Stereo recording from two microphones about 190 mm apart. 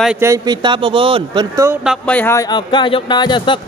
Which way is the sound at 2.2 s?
15° left (ahead or behind).